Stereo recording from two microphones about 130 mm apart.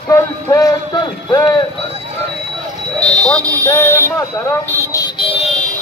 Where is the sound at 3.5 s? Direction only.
15° left (ahead or behind); by 5.4 s 45° left (ahead or behind).